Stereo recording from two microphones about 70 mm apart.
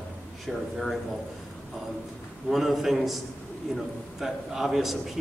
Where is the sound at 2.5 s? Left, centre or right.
Centre.